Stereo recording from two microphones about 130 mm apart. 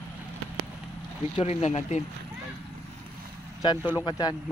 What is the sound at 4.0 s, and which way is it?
Speech, 35° left (ahead or behind).